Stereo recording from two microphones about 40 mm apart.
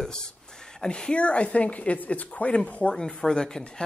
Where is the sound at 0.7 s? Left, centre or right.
Left.